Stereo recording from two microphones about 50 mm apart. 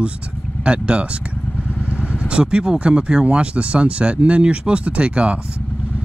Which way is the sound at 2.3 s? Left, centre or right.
Centre.